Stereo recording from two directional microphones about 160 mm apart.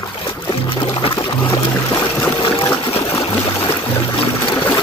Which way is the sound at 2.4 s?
30° left (ahead or behind).